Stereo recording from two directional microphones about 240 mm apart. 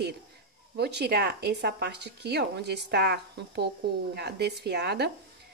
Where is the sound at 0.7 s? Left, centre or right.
Right.